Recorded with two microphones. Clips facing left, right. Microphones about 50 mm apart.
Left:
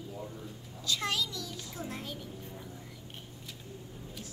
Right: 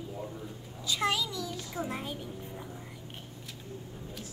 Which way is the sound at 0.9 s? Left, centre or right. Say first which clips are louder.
Right 3 dB; centre.